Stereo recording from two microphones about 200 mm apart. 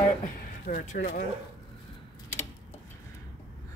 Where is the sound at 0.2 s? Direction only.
40° left (ahead or behind).